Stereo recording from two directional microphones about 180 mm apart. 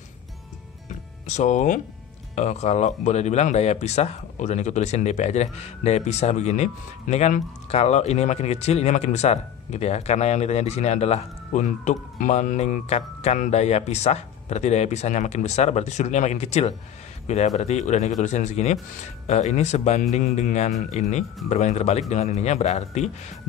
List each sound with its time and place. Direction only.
1.2 s speech: 40° left (ahead or behind)